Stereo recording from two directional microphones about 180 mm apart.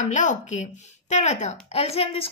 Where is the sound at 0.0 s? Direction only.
45° left (ahead or behind).